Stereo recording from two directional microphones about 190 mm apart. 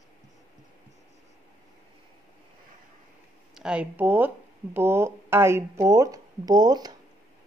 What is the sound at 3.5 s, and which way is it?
Speech, 5° right (ahead or behind).